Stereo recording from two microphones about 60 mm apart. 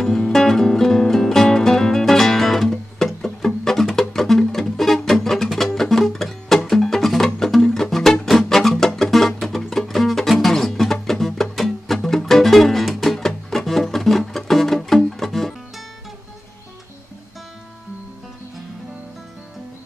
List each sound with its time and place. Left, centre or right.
0.0 s music: centre